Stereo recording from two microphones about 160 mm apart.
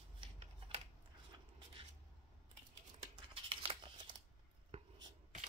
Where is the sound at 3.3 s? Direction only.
35° right (ahead or behind).